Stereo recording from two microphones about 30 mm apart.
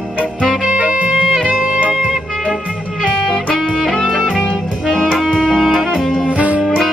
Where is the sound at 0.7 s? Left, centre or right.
Right.